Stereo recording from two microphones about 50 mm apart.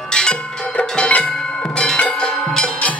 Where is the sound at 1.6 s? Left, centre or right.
Centre.